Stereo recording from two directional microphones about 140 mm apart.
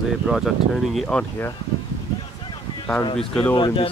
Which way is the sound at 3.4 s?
35° left (ahead or behind).